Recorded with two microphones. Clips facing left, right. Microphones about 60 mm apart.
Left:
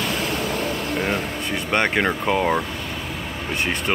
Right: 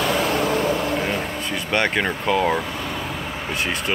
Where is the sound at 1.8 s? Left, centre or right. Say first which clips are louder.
Left 1 dB; centre.